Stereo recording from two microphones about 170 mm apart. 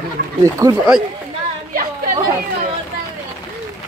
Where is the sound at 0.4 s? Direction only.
20° right (ahead or behind).